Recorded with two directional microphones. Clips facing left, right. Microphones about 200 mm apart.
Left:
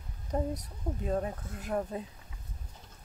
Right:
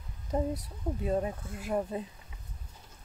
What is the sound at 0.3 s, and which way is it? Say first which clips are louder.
Speech: right 2 dB; 5° right (ahead or behind).